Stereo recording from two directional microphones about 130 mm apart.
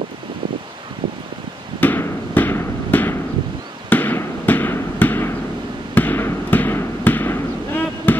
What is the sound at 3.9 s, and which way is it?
Basketball bounce, 15° left (ahead or behind).